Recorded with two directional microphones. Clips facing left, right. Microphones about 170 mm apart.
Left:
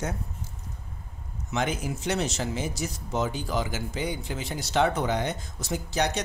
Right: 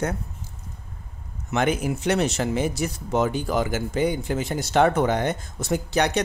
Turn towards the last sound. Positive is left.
turn(degrees=-65)  # may be behind; listen again after turning